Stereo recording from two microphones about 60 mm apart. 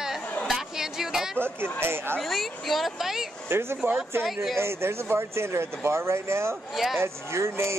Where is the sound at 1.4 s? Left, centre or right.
Right.